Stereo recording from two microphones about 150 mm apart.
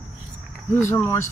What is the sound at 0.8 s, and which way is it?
Speech, 15° left (ahead or behind).